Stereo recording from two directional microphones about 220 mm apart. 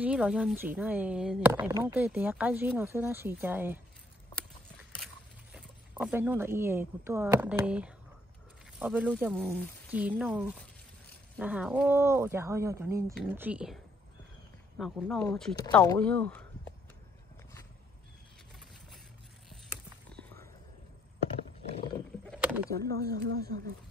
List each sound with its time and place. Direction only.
0.0 s speech: 5° right (ahead or behind)
5.0 s speech: 5° right (ahead or behind)
14.8 s speech: centre (ahead or behind)
19.5 s a sound: centre (ahead or behind)
21.6 s roaring cats: 25° left (ahead or behind)
22.9 s speech: 45° right (ahead or behind)